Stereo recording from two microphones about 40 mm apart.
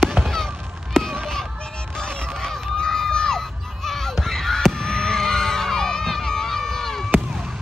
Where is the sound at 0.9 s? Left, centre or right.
Centre.